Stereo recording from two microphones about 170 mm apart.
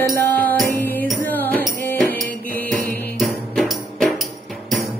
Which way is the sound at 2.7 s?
55° right (ahead or behind).